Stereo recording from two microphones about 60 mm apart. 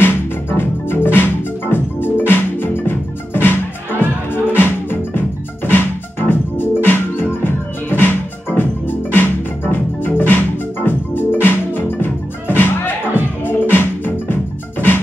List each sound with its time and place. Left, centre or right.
0.0 s music: left
4.6 s music: left